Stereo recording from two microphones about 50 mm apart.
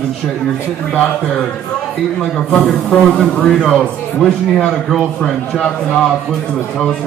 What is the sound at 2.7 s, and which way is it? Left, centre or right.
A man's voice, centre.